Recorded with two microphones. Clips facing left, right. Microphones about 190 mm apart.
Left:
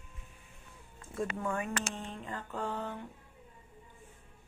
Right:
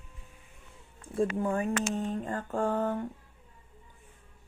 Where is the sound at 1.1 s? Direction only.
30° right (ahead or behind).